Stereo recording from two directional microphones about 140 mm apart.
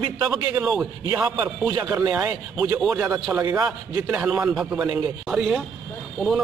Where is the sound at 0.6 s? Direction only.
5° right (ahead or behind).